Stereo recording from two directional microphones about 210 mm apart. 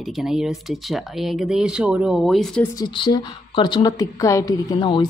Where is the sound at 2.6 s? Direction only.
20° left (ahead or behind).